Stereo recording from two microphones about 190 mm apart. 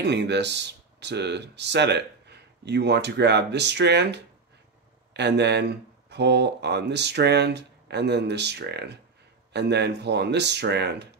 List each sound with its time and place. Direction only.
0.0 s speech: 65° right (ahead or behind)